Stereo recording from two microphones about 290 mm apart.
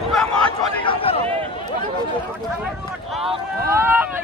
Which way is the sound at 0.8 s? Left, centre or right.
Centre.